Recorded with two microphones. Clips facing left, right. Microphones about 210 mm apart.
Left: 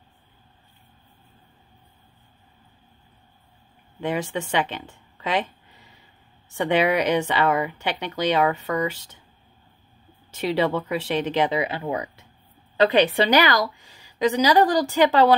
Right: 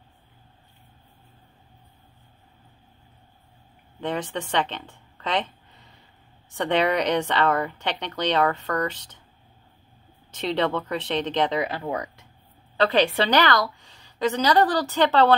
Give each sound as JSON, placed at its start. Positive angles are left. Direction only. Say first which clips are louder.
{"t": 4.0, "sound": "speech", "louder": "left 2 dB", "side_deg": 10}
{"t": 10.3, "sound": "speech", "louder": "left 2 dB", "side_deg": 10}